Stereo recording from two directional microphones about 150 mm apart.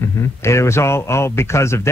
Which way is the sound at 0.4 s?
20° left (ahead or behind).